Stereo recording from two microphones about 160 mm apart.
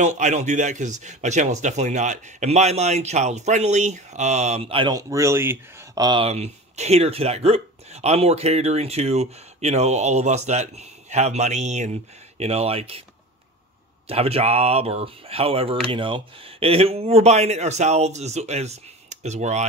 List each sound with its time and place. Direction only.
0.0 s speech: 50° right (ahead or behind); by 6.0 s 15° right (ahead or behind)
6.0 s speech: 35° right (ahead or behind)
14.0 s speech: 40° right (ahead or behind)